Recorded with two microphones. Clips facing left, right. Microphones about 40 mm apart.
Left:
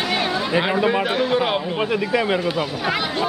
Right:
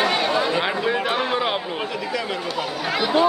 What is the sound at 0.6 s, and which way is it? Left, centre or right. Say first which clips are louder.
Chatter: left 3 dB; centre.